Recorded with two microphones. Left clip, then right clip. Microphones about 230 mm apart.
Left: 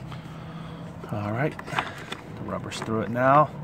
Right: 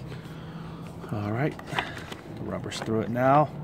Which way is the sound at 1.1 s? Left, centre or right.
Centre.